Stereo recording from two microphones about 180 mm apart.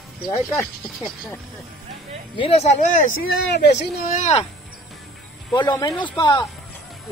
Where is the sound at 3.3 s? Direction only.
65° left (ahead or behind); by 4.4 s 45° left (ahead or behind).